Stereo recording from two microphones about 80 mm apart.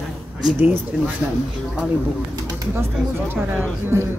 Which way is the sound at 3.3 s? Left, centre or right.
Right.